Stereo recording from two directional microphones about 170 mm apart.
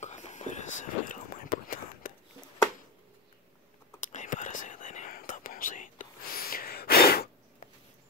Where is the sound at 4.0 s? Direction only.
45° left (ahead or behind); by 7.7 s 65° left (ahead or behind).